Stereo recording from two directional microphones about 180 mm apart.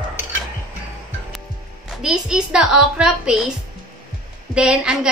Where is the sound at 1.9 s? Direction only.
5° right (ahead or behind).